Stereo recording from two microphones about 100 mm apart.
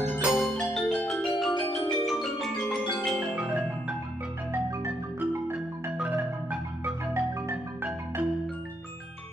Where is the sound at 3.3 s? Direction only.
10° right (ahead or behind).